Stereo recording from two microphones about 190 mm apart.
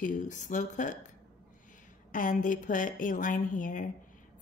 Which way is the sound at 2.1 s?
45° left (ahead or behind).